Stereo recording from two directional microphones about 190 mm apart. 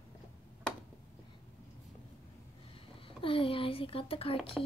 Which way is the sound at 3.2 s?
30° left (ahead or behind).